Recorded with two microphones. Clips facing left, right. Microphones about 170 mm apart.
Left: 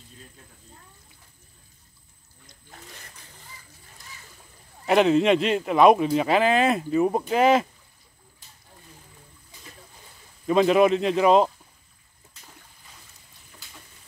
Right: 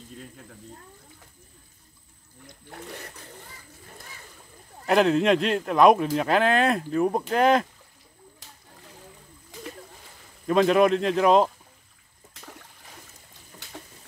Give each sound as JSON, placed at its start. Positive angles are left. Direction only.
{"t": 2.4, "sound": "splash", "side_deg": -60}
{"t": 4.8, "sound": "speech", "side_deg": 0}
{"t": 10.4, "sound": "speech", "side_deg": 0}